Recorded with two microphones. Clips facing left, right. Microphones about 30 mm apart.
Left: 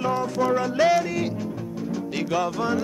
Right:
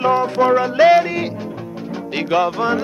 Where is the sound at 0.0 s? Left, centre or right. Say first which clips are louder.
Right 8 dB; right.